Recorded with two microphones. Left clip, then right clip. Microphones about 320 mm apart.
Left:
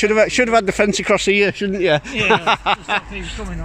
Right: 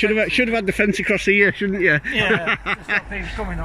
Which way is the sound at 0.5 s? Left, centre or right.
Left.